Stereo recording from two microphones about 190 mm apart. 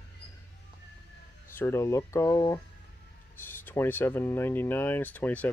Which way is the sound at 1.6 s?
15° left (ahead or behind).